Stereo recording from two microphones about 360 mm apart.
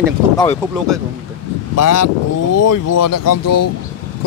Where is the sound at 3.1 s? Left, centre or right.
Left.